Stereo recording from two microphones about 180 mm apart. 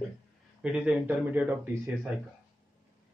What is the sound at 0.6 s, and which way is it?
Speech, 5° right (ahead or behind).